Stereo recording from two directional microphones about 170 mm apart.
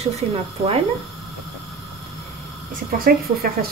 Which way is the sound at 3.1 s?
60° right (ahead or behind).